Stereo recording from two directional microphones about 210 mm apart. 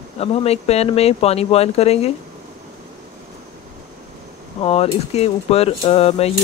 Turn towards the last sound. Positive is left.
turn(degrees=30)  # may be behind; listen again after turning